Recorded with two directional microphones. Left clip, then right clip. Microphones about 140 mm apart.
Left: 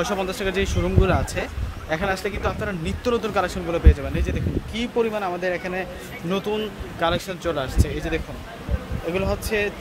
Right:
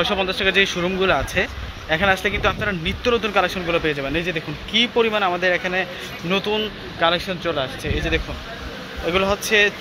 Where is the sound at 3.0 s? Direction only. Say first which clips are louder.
Right 3 dB; 15° left (ahead or behind); by 5.8 s centre (ahead or behind).